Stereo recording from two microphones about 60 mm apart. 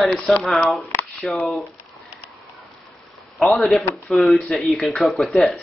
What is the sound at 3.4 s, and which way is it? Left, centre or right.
Speech, centre.